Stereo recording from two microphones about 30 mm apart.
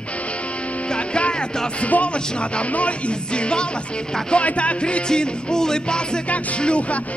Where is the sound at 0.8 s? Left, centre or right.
Left.